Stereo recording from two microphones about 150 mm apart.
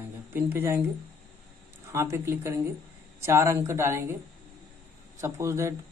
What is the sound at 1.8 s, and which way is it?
Speech, 15° right (ahead or behind).